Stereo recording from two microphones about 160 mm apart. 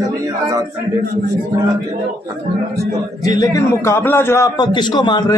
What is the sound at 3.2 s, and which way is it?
A man's voice, 20° left (ahead or behind).